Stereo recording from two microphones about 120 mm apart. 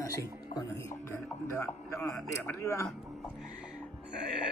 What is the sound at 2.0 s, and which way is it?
Speech, 25° left (ahead or behind).